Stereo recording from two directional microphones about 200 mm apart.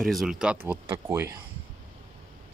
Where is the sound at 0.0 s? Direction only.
Centre (ahead or behind).